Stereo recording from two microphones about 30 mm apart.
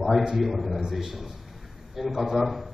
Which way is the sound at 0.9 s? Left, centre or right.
Centre.